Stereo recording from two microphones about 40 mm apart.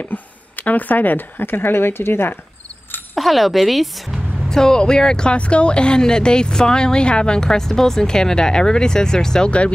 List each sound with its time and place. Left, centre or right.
0.0 s a sound: left
1.4 s speech: left
3.2 s a woman's voice: centre
4.5 s speech: centre